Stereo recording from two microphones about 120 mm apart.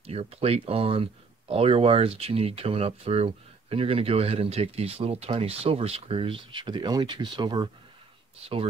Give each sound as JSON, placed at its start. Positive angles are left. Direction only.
{"t": 0.0, "sound": "speech", "side_deg": -55}